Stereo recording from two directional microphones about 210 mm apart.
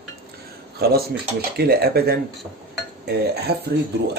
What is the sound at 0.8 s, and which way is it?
Dishes, 50° right (ahead or behind).